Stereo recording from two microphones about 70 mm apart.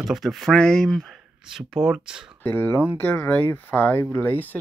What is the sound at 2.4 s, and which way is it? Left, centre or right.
Speech, left.